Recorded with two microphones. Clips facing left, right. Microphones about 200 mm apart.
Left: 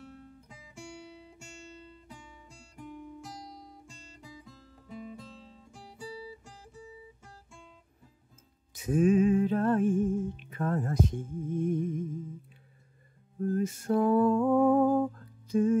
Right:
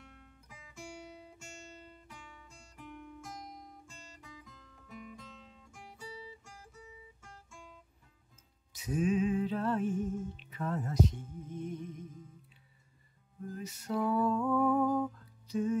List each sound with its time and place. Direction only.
0.0 s music: 35° left (ahead or behind)
2.5 s music: 30° left (ahead or behind)
3.8 s guitar: 30° left (ahead or behind)
8.7 s music: 50° left (ahead or behind)
13.4 s music: 50° left (ahead or behind)
14.9 s music: 30° left (ahead or behind)
15.1 s music: 50° left (ahead or behind)